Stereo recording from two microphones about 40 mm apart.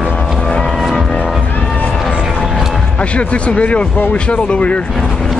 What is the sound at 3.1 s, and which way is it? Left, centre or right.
Speech, left.